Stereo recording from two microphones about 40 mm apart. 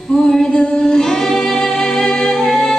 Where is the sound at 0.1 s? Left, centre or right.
Left.